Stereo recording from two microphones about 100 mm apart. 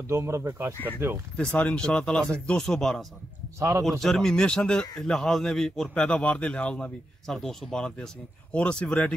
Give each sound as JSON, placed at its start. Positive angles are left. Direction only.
{"t": 0.1, "sound": "speech", "side_deg": -30}
{"t": 0.7, "sound": "a man's voice", "side_deg": 20}
{"t": 3.5, "sound": "speech", "side_deg": -30}
{"t": 4.0, "sound": "a man's voice", "side_deg": 5}